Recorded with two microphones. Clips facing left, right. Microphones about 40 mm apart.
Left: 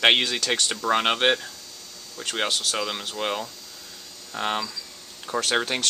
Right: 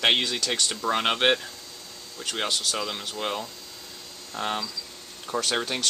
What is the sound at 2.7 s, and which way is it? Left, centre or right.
Speech, left.